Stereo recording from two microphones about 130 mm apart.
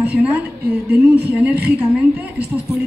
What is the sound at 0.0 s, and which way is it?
A woman's voice, 10° right (ahead or behind).